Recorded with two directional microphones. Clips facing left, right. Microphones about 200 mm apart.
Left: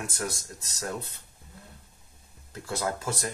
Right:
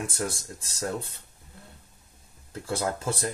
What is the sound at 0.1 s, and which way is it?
Speech, 30° right (ahead or behind).